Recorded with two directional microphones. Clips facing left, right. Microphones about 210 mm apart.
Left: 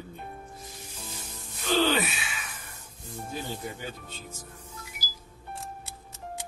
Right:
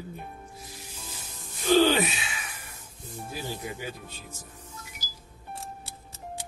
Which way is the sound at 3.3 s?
10° right (ahead or behind).